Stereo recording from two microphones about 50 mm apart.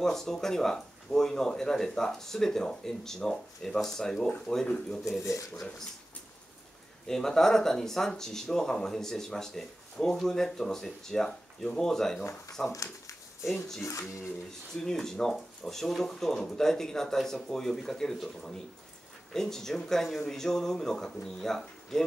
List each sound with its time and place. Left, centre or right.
0.0 s speech: centre
5.2 s speech: left
7.1 s speech: centre
12.8 s a sound: left
13.5 s speech: centre
13.8 s speech: left
14.8 s speech: centre
19.3 s speech: centre